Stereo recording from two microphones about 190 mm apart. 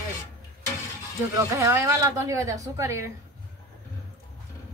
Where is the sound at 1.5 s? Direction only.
15° right (ahead or behind).